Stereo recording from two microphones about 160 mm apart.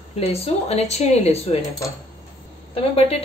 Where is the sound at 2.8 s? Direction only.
40° left (ahead or behind).